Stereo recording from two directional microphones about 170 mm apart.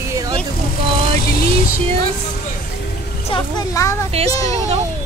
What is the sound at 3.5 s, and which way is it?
Speech, 20° left (ahead or behind).